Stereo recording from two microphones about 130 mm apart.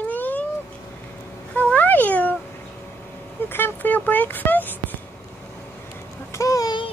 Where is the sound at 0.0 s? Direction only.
15° left (ahead or behind).